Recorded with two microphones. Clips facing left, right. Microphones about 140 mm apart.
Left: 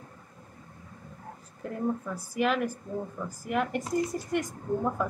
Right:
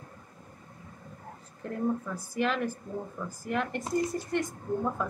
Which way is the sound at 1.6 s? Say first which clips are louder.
Even; 5° left (ahead or behind).